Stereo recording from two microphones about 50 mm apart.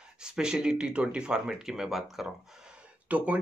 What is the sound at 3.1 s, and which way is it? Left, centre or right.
Speech, right.